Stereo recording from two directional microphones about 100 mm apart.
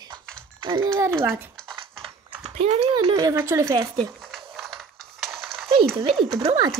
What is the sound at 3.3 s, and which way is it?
Speech, 30° right (ahead or behind).